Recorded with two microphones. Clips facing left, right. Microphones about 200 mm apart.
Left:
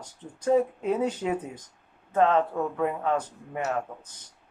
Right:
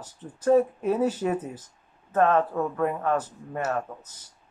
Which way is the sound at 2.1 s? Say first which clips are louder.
Right 1 dB; 15° left (ahead or behind).